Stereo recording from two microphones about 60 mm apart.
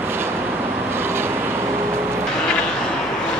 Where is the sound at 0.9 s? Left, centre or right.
Right.